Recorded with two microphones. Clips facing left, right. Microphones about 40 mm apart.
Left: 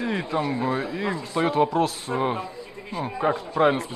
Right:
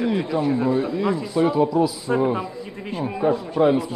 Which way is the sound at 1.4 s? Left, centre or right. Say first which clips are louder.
Right 2 dB; left.